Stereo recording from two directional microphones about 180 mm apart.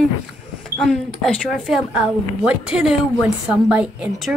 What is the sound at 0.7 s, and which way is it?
Speech, centre (ahead or behind).